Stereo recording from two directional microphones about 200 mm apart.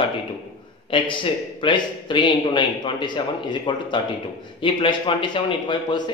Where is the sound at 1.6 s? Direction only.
25° left (ahead or behind).